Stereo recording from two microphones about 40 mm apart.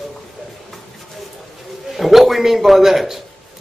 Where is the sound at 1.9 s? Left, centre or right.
Centre.